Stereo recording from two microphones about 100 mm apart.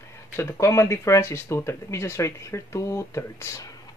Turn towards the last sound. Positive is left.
turn(degrees=30)  # may be behind; listen again after turning